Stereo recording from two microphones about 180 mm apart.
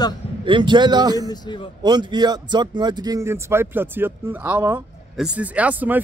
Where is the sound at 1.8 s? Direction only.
25° right (ahead or behind).